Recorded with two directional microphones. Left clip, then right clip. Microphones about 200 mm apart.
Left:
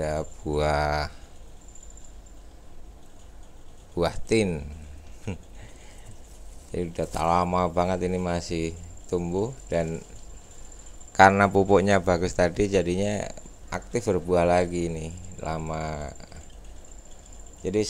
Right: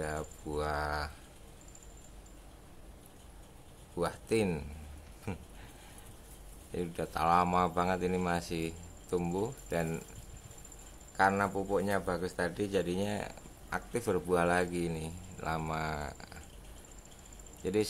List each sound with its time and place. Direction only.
0.0 s speech: 20° left (ahead or behind)
3.9 s speech: 25° left (ahead or behind)
5.3 s speech: 10° left (ahead or behind)
6.7 s speech: 15° left (ahead or behind)
11.1 s speech: 35° left (ahead or behind); by 16.3 s 15° left (ahead or behind)